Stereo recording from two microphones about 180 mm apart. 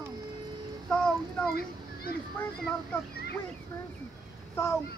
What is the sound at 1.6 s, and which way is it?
Speech, 60° left (ahead or behind).